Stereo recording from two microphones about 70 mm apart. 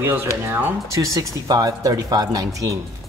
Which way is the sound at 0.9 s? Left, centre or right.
Right.